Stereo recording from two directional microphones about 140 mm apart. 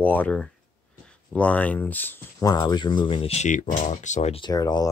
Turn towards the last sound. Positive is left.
turn(degrees=25)  # may be behind; listen again after turning